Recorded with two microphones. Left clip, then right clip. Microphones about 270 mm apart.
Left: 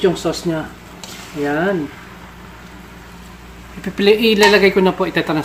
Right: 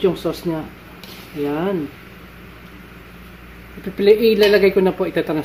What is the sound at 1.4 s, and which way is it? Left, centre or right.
Speech, left.